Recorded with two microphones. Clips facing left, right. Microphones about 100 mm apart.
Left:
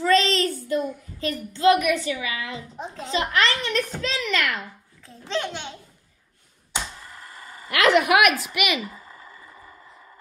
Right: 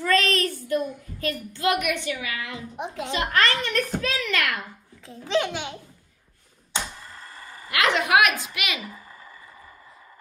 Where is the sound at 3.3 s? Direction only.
50° right (ahead or behind).